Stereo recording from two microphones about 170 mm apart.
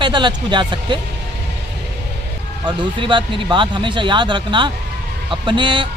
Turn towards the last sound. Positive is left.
turn(degrees=-30)  # may be behind; listen again after turning